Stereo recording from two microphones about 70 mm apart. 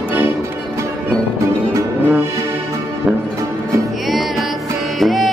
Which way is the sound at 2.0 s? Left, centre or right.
Right.